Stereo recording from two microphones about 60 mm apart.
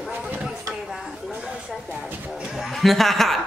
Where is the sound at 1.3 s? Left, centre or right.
Centre.